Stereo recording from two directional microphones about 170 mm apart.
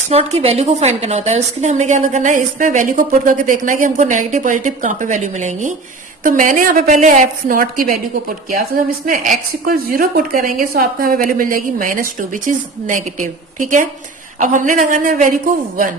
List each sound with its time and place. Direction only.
0.1 s a woman's voice: 35° right (ahead or behind); by 15.9 s 55° right (ahead or behind)